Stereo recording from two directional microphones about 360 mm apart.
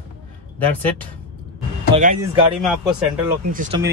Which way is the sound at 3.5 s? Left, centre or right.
Right.